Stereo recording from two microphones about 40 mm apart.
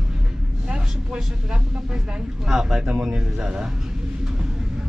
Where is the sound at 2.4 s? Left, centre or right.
Centre.